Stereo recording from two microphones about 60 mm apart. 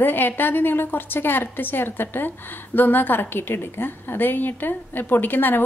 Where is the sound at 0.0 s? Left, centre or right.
Left.